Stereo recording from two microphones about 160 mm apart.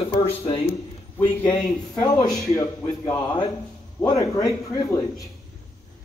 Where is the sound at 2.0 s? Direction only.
25° left (ahead or behind).